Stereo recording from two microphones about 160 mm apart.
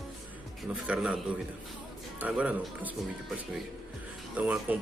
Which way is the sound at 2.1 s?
10° right (ahead or behind).